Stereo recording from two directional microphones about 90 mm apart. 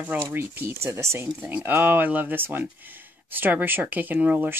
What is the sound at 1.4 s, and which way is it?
Speech, 20° right (ahead or behind).